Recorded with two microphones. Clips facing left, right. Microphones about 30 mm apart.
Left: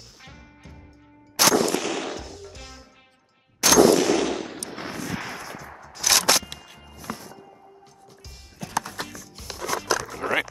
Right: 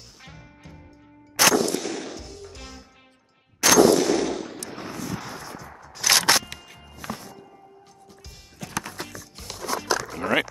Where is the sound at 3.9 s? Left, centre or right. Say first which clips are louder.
Left 1 dB; left.